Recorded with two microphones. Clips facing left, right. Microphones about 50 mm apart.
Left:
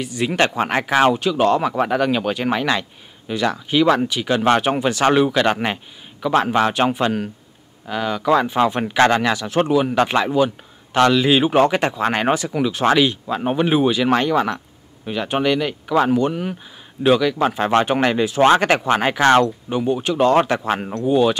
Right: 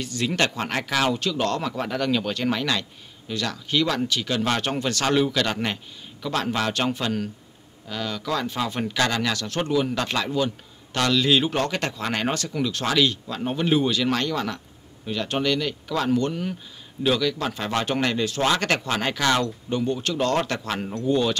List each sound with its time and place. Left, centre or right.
0.0 s speech: centre
1.1 s speech: centre
5.0 s speech: left
8.9 s speech: left
9.3 s speech: centre
19.4 s speech: centre